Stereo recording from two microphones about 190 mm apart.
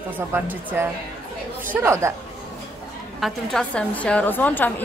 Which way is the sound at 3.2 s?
Centre (ahead or behind).